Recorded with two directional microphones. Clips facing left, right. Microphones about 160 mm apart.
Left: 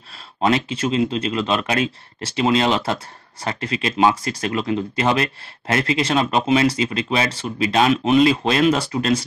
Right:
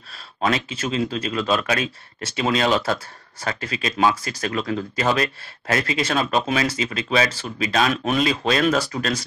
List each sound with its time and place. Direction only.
0.7 s speech: 25° left (ahead or behind)